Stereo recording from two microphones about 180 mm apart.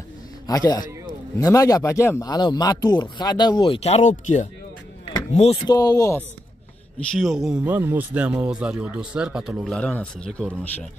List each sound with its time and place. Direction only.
0.5 s speech: 20° left (ahead or behind)
5.7 s speech: 20° left (ahead or behind)
7.2 s speech: centre (ahead or behind)
9.8 s speech: 5° left (ahead or behind)